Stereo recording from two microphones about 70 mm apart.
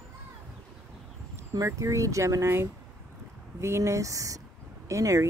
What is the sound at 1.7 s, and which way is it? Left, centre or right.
Speech, right.